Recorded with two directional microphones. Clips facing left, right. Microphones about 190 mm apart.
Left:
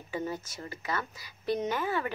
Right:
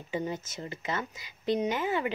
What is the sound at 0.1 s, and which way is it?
A woman's voice, 20° right (ahead or behind).